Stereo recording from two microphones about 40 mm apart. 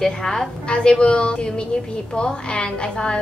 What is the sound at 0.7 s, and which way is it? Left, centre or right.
A woman's voice, left.